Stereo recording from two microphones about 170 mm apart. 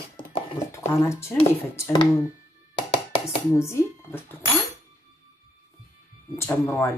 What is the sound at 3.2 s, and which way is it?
Speech, 15° left (ahead or behind).